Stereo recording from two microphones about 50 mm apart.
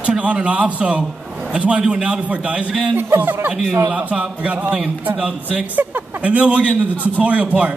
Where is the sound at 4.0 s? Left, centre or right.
Right.